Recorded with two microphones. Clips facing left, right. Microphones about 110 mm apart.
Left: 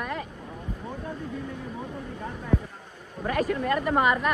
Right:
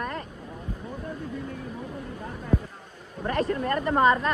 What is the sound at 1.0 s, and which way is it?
Vehicle, 25° left (ahead or behind).